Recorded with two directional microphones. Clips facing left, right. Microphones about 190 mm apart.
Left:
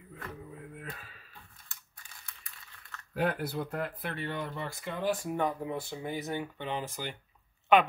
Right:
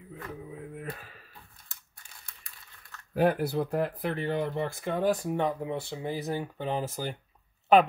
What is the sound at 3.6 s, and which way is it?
Speech, 50° right (ahead or behind).